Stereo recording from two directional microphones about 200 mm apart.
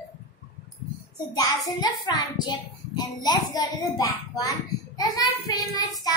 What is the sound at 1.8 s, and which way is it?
A child's voice, 20° left (ahead or behind).